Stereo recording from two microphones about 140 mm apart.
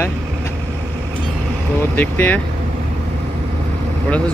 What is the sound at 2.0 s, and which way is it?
Speech, 10° left (ahead or behind).